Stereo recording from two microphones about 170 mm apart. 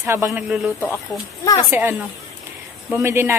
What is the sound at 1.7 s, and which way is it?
A woman's voice, 10° right (ahead or behind).